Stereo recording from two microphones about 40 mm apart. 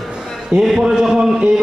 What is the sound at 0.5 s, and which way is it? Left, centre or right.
Speech, right.